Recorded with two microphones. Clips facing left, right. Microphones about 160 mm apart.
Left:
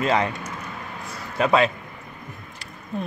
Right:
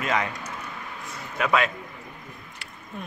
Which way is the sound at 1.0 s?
30° left (ahead or behind).